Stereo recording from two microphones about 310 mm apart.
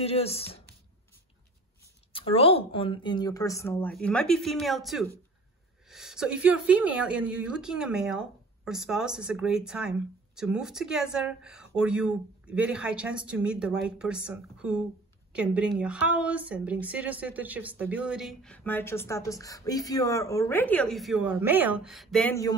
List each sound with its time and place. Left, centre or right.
0.0 s speech: centre
2.1 s a woman's voice: centre